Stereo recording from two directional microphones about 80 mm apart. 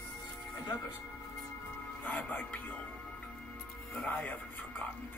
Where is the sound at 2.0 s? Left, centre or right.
Centre.